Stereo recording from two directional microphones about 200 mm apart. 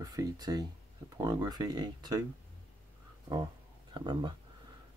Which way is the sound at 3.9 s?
20° right (ahead or behind).